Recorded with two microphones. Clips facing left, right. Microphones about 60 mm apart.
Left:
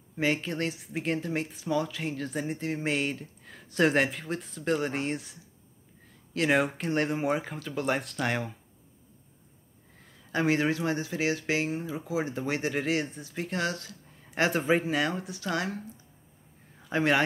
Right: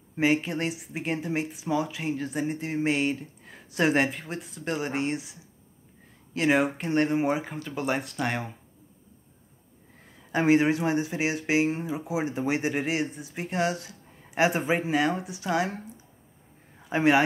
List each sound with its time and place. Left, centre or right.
0.2 s speech: centre
10.3 s speech: centre
16.9 s speech: centre